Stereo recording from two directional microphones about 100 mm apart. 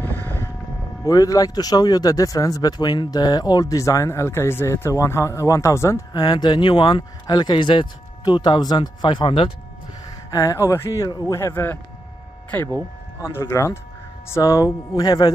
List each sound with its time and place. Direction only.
1.0 s speech: 35° left (ahead or behind)
6.1 s speech: 45° left (ahead or behind)
8.2 s speech: 45° left (ahead or behind)
10.3 s speech: 35° left (ahead or behind)
11.3 s speech: 25° left (ahead or behind)
13.2 s speech: 25° left (ahead or behind)